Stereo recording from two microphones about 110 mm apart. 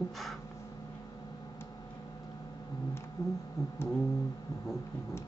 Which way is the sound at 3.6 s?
30° left (ahead or behind).